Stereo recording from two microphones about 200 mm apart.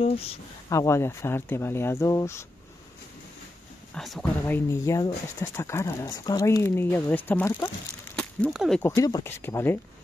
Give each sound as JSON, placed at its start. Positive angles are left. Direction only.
{"t": 0.0, "sound": "speech", "side_deg": 30}
{"t": 0.7, "sound": "speech", "side_deg": 15}
{"t": 3.9, "sound": "speech", "side_deg": 0}
{"t": 8.8, "sound": "speech", "side_deg": 20}